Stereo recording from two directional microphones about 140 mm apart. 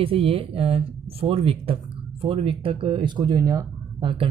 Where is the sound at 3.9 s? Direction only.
40° right (ahead or behind).